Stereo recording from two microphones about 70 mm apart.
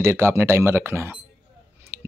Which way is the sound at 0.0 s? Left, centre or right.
Right.